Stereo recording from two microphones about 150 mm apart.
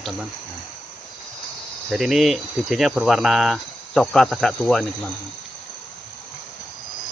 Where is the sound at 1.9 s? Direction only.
Centre (ahead or behind).